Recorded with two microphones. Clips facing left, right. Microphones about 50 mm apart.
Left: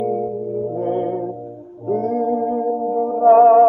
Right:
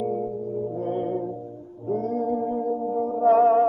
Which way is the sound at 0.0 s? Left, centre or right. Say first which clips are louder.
Left 6 dB; left.